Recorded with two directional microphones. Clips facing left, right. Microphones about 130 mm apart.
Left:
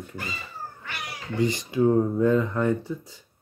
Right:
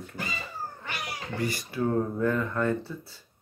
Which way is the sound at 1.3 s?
20° left (ahead or behind).